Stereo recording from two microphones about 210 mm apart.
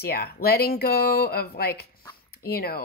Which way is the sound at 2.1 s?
45° left (ahead or behind).